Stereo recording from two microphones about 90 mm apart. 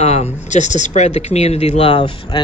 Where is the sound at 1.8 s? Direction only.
80° left.